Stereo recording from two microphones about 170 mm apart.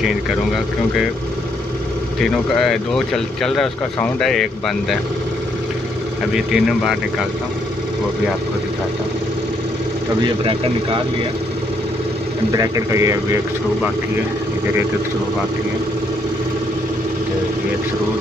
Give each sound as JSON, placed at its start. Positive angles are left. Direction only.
{"t": 2.6, "sound": "speech", "side_deg": 0}
{"t": 6.3, "sound": "speech", "side_deg": -5}
{"t": 10.2, "sound": "speech", "side_deg": -30}
{"t": 12.5, "sound": "speech", "side_deg": -20}